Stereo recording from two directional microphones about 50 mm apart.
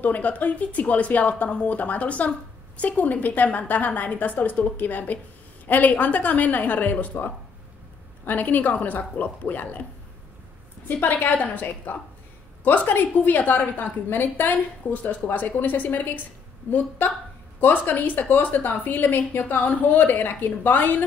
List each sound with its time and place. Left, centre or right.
0.0 s a woman's voice: left
11.0 s a woman's voice: left